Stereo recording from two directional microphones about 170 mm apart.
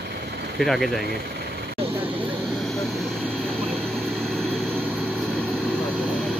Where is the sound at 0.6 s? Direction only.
Centre (ahead or behind).